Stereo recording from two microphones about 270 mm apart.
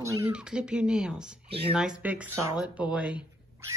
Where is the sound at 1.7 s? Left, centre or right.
Centre.